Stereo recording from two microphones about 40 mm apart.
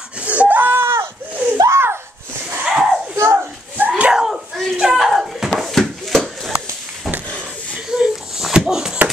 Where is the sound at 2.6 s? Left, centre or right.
Centre.